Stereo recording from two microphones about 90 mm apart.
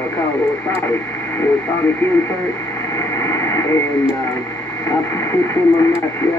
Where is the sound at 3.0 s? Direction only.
30° left (ahead or behind).